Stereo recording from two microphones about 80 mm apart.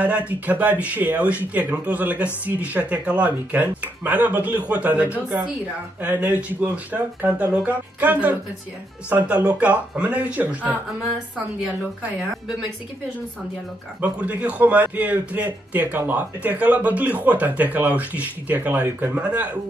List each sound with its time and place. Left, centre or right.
0.0 s a man's voice: centre
9.5 s speech: centre
14.0 s a man's voice: centre